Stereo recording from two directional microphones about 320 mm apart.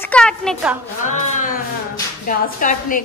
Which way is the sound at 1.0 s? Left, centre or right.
Left.